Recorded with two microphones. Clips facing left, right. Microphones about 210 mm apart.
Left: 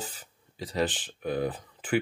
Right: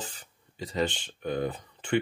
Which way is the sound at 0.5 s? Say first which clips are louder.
Even; centre (ahead or behind).